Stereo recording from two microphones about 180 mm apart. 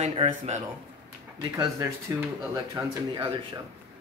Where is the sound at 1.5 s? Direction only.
20° right (ahead or behind).